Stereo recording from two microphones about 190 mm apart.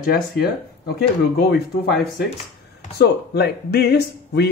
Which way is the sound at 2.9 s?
60° left (ahead or behind).